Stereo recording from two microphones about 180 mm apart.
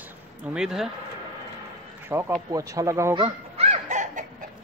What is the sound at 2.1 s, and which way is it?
Speech, 15° right (ahead or behind).